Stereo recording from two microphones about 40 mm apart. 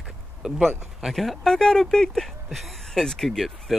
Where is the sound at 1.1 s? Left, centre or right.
Centre.